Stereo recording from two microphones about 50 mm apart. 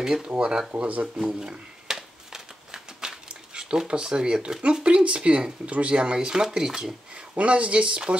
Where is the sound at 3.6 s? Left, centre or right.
Centre.